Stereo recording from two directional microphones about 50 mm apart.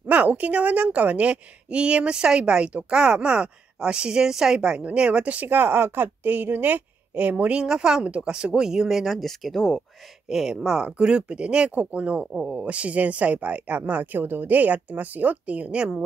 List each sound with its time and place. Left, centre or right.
0.0 s a woman's voice: right
7.6 s a woman's voice: centre
8.0 s a woman's voice: right; by 9.8 s centre
10.2 s speech: centre; by 14.2 s right
14.2 s a woman's voice: right; by 16.0 s centre